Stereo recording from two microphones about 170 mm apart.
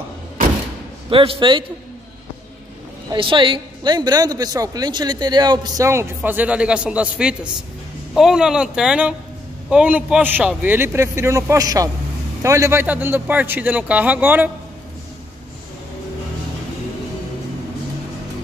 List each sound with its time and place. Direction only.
1.1 s a woman's voice: 30° right (ahead or behind)
3.1 s a woman's voice: 30° right (ahead or behind); by 14.5 s 10° right (ahead or behind)